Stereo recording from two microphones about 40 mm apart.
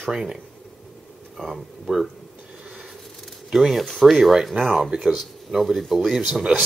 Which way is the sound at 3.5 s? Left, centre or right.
Centre.